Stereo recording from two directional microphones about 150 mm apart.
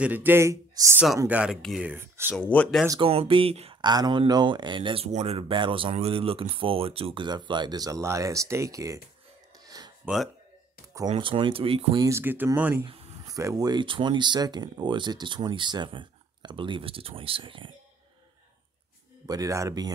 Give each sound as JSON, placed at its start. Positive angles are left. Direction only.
{"t": 0.0, "sound": "speech", "side_deg": -10}
{"t": 1.2, "sound": "speech", "side_deg": -10}
{"t": 1.9, "sound": "speech", "side_deg": -15}
{"t": 2.3, "sound": "speech", "side_deg": 10}
{"t": 3.0, "sound": "speech", "side_deg": -40}
{"t": 3.8, "sound": "speech", "side_deg": -30}
{"t": 9.6, "sound": "a sound", "side_deg": -25}
{"t": 10.0, "sound": "speech", "side_deg": 0}
{"t": 11.1, "sound": "speech", "side_deg": -35}
{"t": 12.0, "sound": "speech", "side_deg": -15}
{"t": 13.3, "sound": "speech", "side_deg": -25}
{"t": 19.2, "sound": "speech", "side_deg": -25}